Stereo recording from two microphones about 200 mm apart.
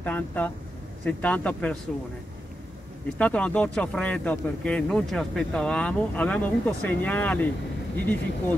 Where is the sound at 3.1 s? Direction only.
5° left (ahead or behind).